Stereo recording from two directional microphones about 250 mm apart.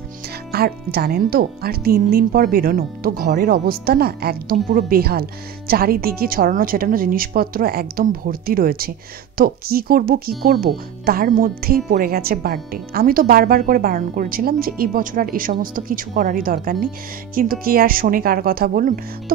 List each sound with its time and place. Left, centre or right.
0.5 s speech: right